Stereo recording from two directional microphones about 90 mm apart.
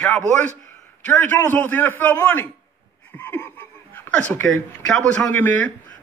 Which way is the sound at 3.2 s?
25° left (ahead or behind).